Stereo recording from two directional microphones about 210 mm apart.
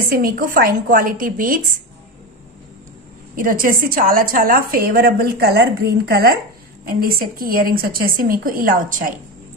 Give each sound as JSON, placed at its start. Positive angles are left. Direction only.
{"t": 0.1, "sound": "speech", "side_deg": -45}
{"t": 3.3, "sound": "a woman's voice", "side_deg": -40}